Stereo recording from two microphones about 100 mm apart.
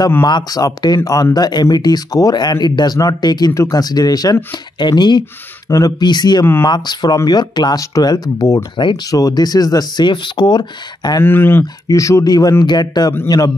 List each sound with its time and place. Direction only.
0.2 s speech: 50° left (ahead or behind)
5.7 s speech: 35° left (ahead or behind)
8.8 s speech: 55° left (ahead or behind)
9.1 s speech: 40° left (ahead or behind)
11.1 s speech: 20° left (ahead or behind)
11.9 s speech: 30° left (ahead or behind)